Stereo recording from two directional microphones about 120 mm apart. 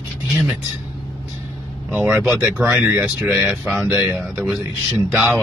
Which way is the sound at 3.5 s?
10° right (ahead or behind).